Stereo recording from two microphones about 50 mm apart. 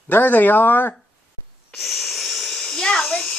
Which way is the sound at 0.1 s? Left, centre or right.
Left.